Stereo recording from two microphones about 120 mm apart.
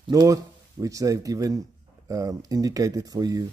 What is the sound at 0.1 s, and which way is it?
Speech, 30° right (ahead or behind).